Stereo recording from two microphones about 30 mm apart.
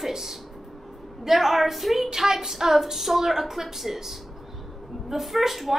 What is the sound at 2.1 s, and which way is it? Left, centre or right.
A woman's voice, centre.